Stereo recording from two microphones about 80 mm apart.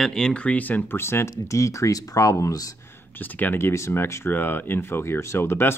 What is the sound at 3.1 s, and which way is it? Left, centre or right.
Speech, left.